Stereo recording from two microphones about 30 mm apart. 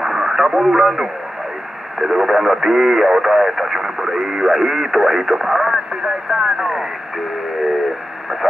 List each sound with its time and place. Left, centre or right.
0.0 s radio: centre
0.7 s speech: centre
4.5 s speech: centre